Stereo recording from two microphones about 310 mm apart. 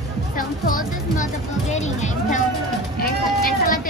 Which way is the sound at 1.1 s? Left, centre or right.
Left.